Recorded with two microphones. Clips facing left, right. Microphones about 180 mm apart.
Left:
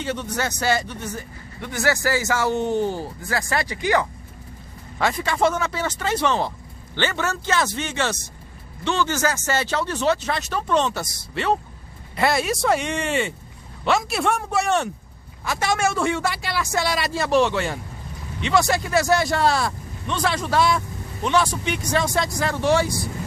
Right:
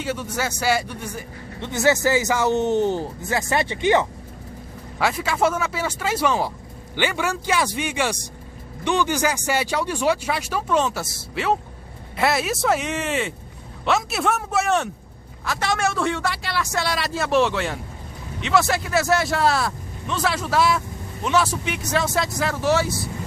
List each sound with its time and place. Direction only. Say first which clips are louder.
0.0 s speech: even; 5° right (ahead or behind)
1.6 s speech: right 3 dB; 20° right (ahead or behind)
4.9 s speech: even; 5° right (ahead or behind)